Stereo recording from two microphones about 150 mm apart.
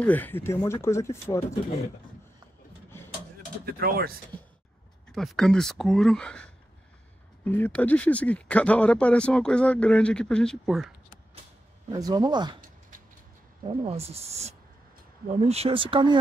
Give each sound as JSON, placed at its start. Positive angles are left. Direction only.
{"t": 0.0, "sound": "speech", "side_deg": 10}
{"t": 2.9, "sound": "a sound", "side_deg": 15}
{"t": 3.6, "sound": "speech", "side_deg": -90}
{"t": 5.1, "sound": "speech", "side_deg": 0}
{"t": 11.9, "sound": "speech", "side_deg": -25}
{"t": 13.7, "sound": "speech", "side_deg": -40}